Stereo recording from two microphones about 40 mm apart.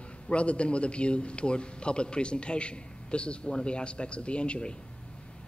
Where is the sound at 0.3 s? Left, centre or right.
Left.